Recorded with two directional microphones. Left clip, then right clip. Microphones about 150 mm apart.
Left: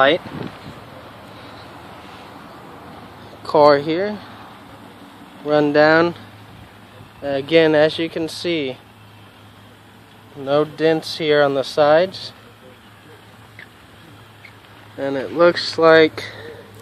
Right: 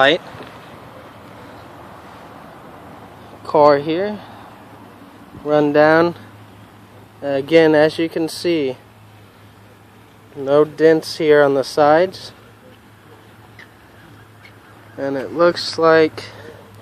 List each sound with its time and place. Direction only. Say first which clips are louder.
3.4 s speech: even; centre (ahead or behind)
5.5 s speech: right 1 dB; 10° right (ahead or behind)
7.2 s speech: right 2 dB; 20° right (ahead or behind)
10.4 s speech: right 4 dB; 20° right (ahead or behind)
15.0 s speech: even; 5° right (ahead or behind)
15.3 s speech: left 1 dB; 5° left (ahead or behind)